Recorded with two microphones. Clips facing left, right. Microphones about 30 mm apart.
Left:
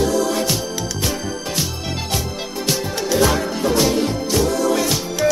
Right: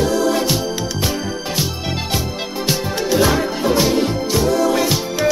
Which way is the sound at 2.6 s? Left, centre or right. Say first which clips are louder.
Right 2 dB; centre.